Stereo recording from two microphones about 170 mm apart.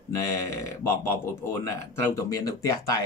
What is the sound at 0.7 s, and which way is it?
Speech, 15° left (ahead or behind).